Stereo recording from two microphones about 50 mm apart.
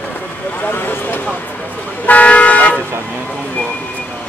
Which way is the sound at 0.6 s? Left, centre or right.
Left.